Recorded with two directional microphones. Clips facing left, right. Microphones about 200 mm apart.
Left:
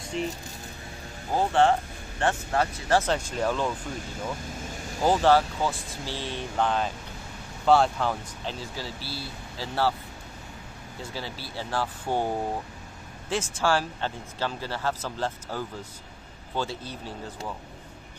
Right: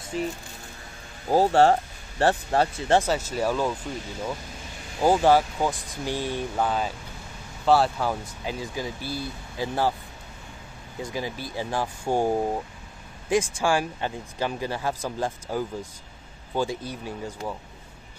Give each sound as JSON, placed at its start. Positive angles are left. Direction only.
{"t": 0.1, "sound": "speech", "side_deg": -5}
{"t": 1.3, "sound": "speech", "side_deg": -35}
{"t": 3.0, "sound": "speech", "side_deg": -5}
{"t": 5.0, "sound": "speech", "side_deg": -15}
{"t": 11.0, "sound": "speech", "side_deg": -15}
{"t": 13.3, "sound": "speech", "side_deg": -15}